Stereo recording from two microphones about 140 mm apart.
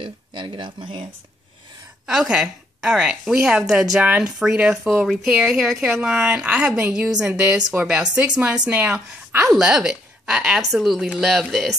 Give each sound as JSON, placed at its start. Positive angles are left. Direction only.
{"t": 0.0, "sound": "speech", "side_deg": -35}
{"t": 2.0, "sound": "a woman's voice", "side_deg": -5}